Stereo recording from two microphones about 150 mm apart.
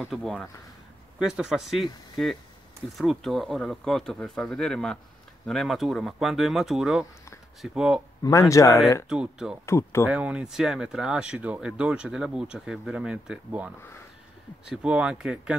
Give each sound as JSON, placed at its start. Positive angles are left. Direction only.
{"t": 0.0, "sound": "speech", "side_deg": 0}
{"t": 8.2, "sound": "speech", "side_deg": 20}
{"t": 9.1, "sound": "speech", "side_deg": -5}
{"t": 9.7, "sound": "speech", "side_deg": 20}
{"t": 10.0, "sound": "speech", "side_deg": -10}
{"t": 14.7, "sound": "speech", "side_deg": -5}